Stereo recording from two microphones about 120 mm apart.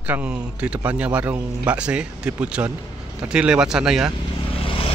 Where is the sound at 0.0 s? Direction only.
15° right (ahead or behind).